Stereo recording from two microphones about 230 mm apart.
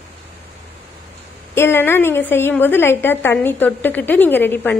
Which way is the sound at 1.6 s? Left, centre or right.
Centre.